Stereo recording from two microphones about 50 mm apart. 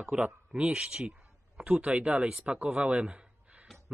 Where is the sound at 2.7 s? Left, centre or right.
Centre.